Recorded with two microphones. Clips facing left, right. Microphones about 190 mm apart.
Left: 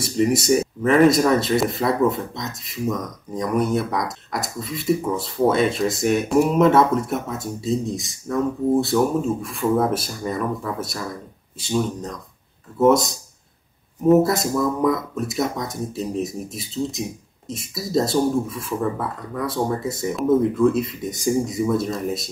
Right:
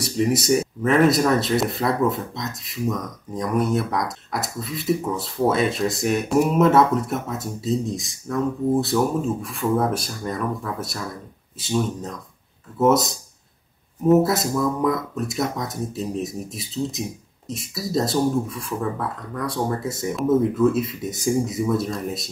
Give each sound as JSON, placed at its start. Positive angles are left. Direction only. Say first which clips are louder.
{"t": 0.0, "sound": "speech", "louder": "left 2 dB", "side_deg": 0}